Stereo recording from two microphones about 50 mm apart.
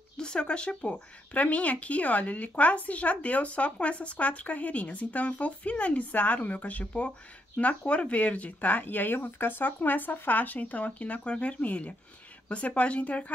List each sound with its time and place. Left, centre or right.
0.2 s speech: centre